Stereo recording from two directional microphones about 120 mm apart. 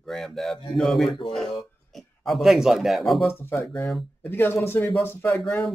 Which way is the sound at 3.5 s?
25° left (ahead or behind).